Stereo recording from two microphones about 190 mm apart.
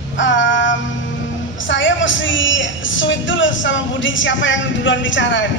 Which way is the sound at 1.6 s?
80° left.